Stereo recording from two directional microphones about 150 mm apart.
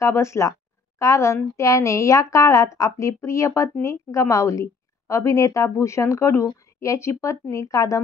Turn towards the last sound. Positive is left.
turn(degrees=20)  # may be behind; listen again after turning